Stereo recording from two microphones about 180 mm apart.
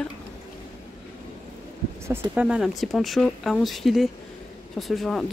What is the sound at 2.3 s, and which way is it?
Speech, 5° right (ahead or behind).